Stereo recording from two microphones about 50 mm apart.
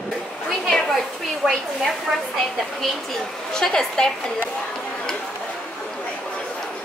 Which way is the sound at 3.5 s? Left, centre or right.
Centre.